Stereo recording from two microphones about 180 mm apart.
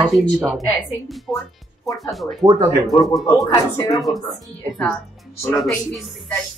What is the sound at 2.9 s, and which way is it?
Speech, 20° left (ahead or behind).